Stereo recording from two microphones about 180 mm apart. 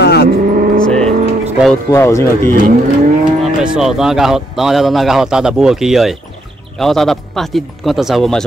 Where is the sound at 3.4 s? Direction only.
5° right (ahead or behind).